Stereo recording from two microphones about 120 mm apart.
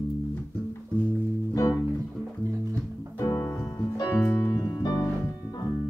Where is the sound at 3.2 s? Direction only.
25° left (ahead or behind).